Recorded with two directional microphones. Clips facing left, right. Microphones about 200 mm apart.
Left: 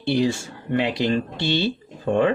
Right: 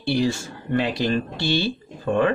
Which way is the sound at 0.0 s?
20° left (ahead or behind).